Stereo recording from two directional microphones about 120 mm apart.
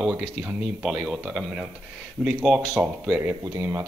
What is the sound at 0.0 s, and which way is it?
Speech, 10° right (ahead or behind).